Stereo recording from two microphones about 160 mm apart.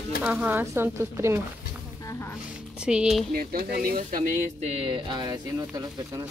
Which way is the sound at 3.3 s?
65° right (ahead or behind).